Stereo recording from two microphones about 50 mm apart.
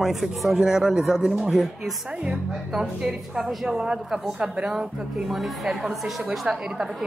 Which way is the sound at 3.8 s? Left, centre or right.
Centre.